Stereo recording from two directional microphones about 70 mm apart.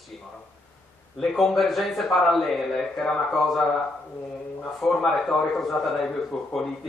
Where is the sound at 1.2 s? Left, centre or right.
Centre.